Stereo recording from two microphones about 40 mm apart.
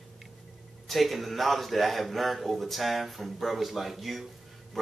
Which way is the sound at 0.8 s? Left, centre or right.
Centre.